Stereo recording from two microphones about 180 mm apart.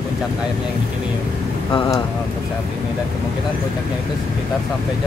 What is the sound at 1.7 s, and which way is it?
Speech, 20° left (ahead or behind).